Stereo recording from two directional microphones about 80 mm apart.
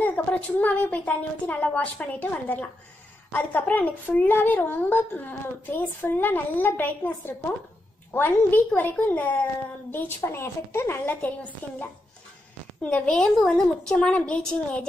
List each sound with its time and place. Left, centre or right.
0.0 s a woman's voice: centre
11.1 s a woman's voice: centre